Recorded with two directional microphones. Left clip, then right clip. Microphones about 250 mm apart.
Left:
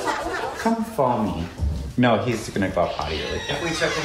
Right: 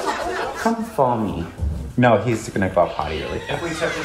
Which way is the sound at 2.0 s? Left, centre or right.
Right.